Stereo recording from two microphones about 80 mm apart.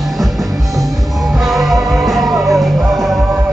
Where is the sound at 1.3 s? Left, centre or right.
Centre.